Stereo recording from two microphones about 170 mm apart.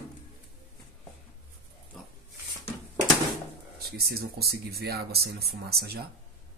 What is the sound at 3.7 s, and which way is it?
Speech, 65° right (ahead or behind).